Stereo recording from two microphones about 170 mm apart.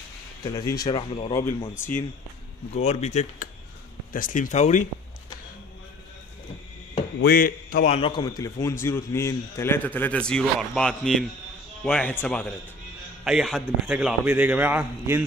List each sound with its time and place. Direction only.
0.4 s speech: 20° left (ahead or behind)
1.7 s a man's voice: 10° left (ahead or behind)
2.7 s a man's voice: 40° left (ahead or behind)
7.2 s speech: 60° left (ahead or behind)
7.8 s a man's voice: 40° left (ahead or behind)
8.1 s a man's voice: 20° left (ahead or behind); by 13.9 s centre (ahead or behind)
13.9 s a man's voice: 10° right (ahead or behind)